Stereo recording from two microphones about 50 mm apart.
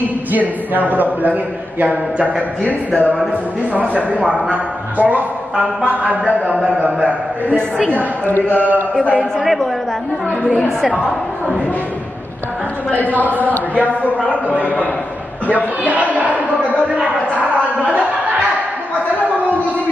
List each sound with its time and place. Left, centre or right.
0.8 s a man's voice: right
2.6 s speech: left
4.1 s a man's voice: right
4.9 s a man's voice: right
7.5 s a woman's voice: centre
7.9 s a man's voice: left
9.0 s speech: left
9.4 s a woman's voice: centre
12.9 s a man's voice: left
15.5 s a sound: right